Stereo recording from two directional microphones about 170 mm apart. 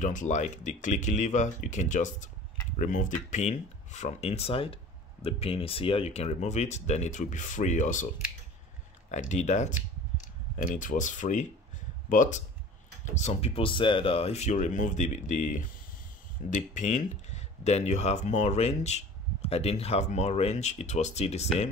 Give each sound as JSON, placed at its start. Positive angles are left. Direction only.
{"t": 0.0, "sound": "speech", "side_deg": 50}
{"t": 9.1, "sound": "speech", "side_deg": 45}